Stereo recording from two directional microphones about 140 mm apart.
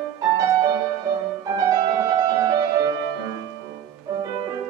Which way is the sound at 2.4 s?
30° right (ahead or behind).